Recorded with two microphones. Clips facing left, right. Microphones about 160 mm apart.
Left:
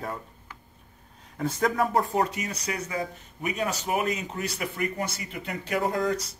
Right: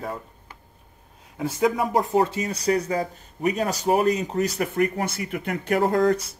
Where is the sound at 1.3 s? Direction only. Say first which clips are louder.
Right 3 dB; 10° right (ahead or behind).